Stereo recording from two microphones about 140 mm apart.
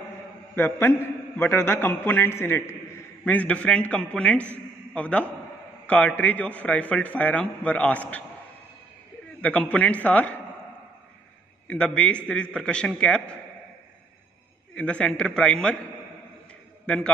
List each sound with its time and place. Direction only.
0.6 s a man's voice: 15° left (ahead or behind)
9.4 s a man's voice: 10° left (ahead or behind)
11.6 s a man's voice: 10° left (ahead or behind)
14.8 s a man's voice: 5° left (ahead or behind)
16.8 s a man's voice: 5° left (ahead or behind)